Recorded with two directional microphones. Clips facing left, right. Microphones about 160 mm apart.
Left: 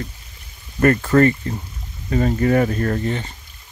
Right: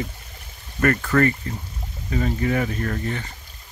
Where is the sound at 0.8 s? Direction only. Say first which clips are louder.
Left 5 dB; 30° left (ahead or behind).